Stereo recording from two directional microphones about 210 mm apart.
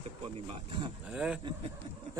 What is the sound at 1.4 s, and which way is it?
Speech, 20° right (ahead or behind).